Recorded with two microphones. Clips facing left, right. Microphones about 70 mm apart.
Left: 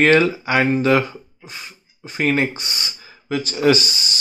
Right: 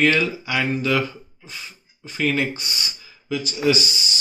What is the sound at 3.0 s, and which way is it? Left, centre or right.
Speech, left.